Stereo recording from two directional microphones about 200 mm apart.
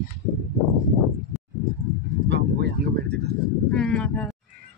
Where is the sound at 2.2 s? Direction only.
55° right (ahead or behind).